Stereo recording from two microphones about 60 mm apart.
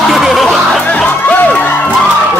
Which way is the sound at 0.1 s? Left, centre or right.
Centre.